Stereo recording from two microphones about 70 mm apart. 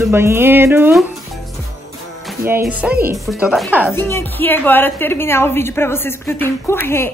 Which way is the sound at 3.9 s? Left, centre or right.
Left.